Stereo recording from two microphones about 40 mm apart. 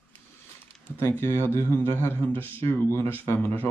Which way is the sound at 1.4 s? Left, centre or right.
Left.